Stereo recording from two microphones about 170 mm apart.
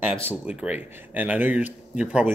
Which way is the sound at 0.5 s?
10° right (ahead or behind).